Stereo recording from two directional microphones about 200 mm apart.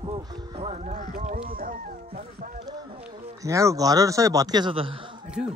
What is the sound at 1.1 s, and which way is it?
Goose, 45° right (ahead or behind).